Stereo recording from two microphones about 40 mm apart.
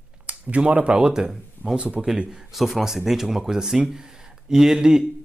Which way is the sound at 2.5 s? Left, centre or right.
Centre.